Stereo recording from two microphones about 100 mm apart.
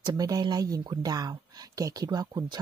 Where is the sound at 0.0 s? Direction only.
40° right (ahead or behind).